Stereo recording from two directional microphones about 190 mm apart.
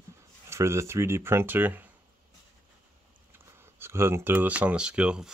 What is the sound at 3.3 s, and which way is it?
Speech, 15° right (ahead or behind).